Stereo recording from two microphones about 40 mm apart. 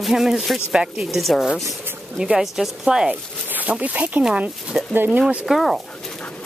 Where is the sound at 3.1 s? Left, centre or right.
Right.